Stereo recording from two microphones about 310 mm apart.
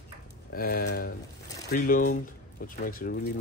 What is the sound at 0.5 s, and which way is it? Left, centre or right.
Speech, left.